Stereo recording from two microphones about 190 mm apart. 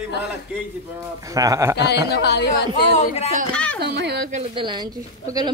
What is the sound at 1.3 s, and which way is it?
Speech, 15° right (ahead or behind).